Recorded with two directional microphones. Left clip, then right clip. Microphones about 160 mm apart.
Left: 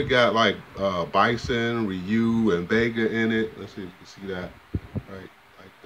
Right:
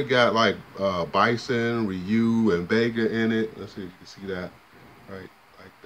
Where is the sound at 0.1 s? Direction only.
5° right (ahead or behind).